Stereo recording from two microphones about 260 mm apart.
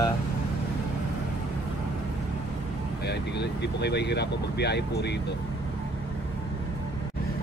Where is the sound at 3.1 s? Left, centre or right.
Left.